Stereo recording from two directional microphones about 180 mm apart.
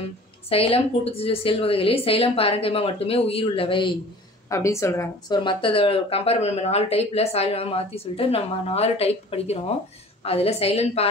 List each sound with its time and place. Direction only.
0.5 s speech: 30° left (ahead or behind)
4.5 s a woman's voice: 15° left (ahead or behind)
5.4 s speech: 25° left (ahead or behind)